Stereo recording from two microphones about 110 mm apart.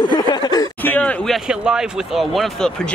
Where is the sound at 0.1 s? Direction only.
40° left (ahead or behind).